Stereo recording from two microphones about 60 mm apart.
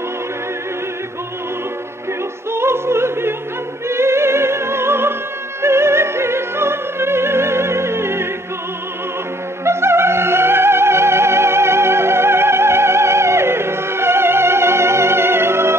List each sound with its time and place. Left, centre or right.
2.5 s music: right
5.6 s opera: right
9.7 s music: right